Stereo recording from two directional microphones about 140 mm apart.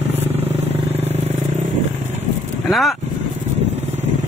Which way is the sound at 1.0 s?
50° right (ahead or behind).